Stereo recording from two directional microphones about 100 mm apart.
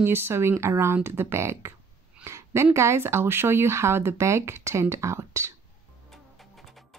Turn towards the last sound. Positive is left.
turn(degrees=-30)  # may be behind; listen again after turning